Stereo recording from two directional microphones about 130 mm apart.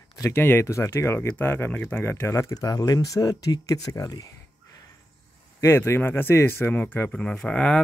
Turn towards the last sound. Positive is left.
turn(degrees=10)  # may be behind; listen again after turning